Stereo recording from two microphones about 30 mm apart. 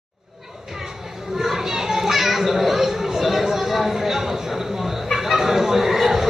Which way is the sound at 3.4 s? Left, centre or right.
Centre.